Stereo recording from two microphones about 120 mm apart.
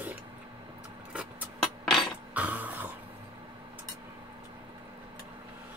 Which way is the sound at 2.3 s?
15° right (ahead or behind).